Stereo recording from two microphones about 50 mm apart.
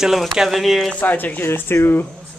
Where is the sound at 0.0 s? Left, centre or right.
Centre.